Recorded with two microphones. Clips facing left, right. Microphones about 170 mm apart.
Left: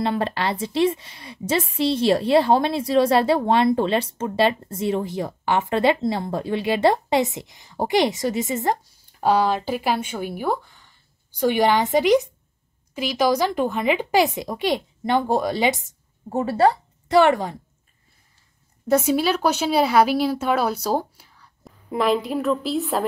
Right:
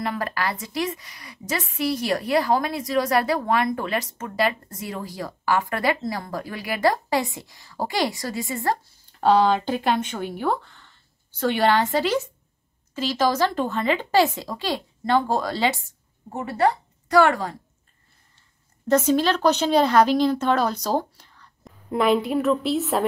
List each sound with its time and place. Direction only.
0.0 s a woman's voice: 25° left (ahead or behind)
9.2 s speech: 5° left (ahead or behind)
16.3 s a woman's voice: 30° left (ahead or behind)
18.9 s speech: 10° left (ahead or behind)